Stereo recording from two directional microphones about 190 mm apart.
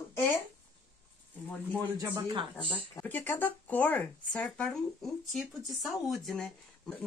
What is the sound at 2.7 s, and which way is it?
Speech, 10° left (ahead or behind).